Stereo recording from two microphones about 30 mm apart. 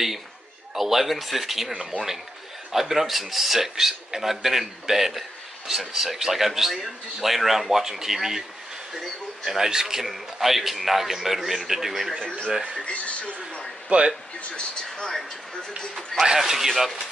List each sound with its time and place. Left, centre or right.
0.7 s speech: centre
1.7 s speech: centre
9.5 s speech: centre
12.7 s speech: left
13.8 s a man's voice: right
16.3 s speech: centre